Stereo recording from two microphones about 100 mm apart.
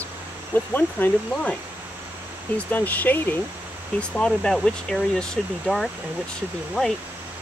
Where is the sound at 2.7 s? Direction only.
15° left (ahead or behind).